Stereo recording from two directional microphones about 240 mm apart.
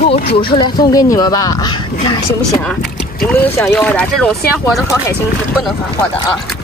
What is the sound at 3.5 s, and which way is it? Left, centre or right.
Speech, centre.